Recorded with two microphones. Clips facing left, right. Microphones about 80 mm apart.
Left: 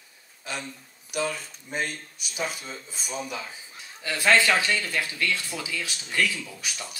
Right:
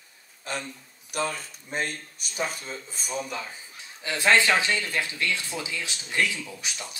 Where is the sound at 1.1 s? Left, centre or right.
Right.